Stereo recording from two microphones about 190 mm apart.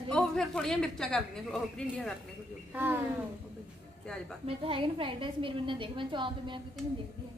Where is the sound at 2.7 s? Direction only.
10° right (ahead or behind).